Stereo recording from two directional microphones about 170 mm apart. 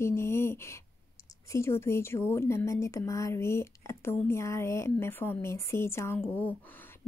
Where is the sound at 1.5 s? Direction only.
15° left (ahead or behind).